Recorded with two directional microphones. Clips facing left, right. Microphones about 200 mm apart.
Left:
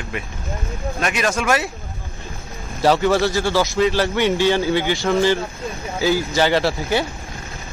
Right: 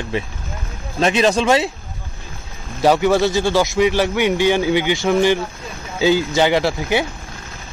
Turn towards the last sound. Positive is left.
turn(degrees=-15)  # may be behind; listen again after turning